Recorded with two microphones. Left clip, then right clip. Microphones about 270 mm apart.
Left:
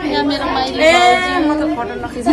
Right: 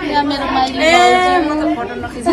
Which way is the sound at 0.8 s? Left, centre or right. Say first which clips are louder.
Even; centre.